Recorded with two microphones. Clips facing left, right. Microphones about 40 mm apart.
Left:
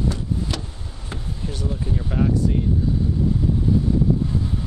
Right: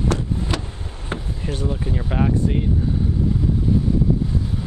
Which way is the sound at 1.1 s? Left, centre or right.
Right.